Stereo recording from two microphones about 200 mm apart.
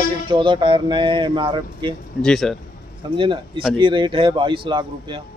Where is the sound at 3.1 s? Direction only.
25° right (ahead or behind).